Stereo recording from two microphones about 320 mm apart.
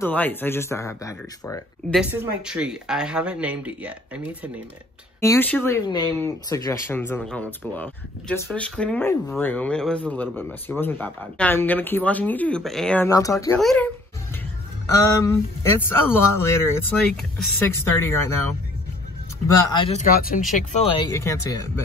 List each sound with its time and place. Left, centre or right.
0.0 s speech: centre
2.0 s speech: centre
5.2 s speech: centre
15.0 s speech: centre
19.4 s speech: centre; by 20.4 s left
21.0 s speech: centre